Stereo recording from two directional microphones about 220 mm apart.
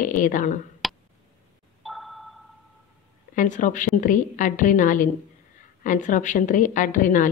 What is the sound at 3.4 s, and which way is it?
A woman's voice, 35° left (ahead or behind).